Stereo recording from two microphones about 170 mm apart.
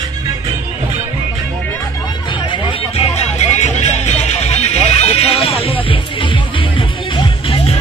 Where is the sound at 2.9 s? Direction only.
40° left (ahead or behind).